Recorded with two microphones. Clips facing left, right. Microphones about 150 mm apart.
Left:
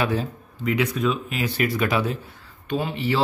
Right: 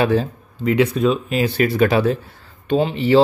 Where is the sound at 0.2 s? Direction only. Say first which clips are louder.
Right 5 dB; 30° right (ahead or behind).